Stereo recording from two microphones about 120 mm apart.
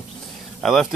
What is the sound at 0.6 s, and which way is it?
Speech, centre (ahead or behind).